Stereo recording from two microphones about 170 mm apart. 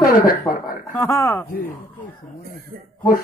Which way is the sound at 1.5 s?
55° left (ahead or behind).